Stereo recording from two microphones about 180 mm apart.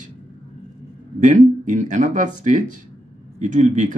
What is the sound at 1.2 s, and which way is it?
Speech, 45° right (ahead or behind).